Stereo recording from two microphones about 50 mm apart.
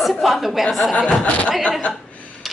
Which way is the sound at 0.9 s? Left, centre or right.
Left.